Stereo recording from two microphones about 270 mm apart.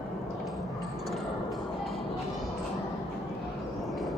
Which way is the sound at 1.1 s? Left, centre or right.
Centre.